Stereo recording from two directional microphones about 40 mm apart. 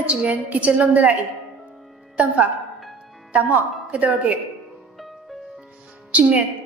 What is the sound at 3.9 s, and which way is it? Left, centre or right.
Speech, right.